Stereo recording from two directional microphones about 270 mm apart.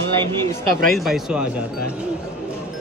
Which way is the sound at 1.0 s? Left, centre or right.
Centre.